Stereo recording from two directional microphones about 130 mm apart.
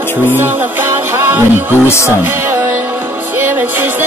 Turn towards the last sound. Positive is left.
turn(degrees=-15)  # may be behind; listen again after turning